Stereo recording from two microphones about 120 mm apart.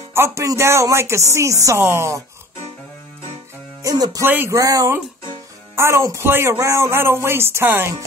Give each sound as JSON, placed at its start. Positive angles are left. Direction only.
{"t": 0.1, "sound": "speech", "side_deg": -20}
{"t": 3.8, "sound": "speech", "side_deg": -30}
{"t": 4.3, "sound": "speech", "side_deg": -15}
{"t": 4.6, "sound": "speech", "side_deg": -30}